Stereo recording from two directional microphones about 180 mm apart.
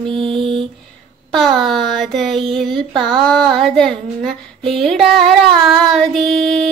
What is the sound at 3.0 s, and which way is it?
Child singing, centre (ahead or behind).